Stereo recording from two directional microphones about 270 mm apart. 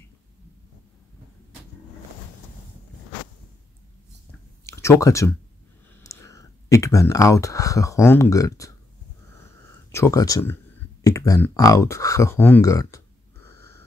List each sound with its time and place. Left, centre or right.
4.6 s speech: centre
9.8 s speech: centre
13.5 s wheeze: centre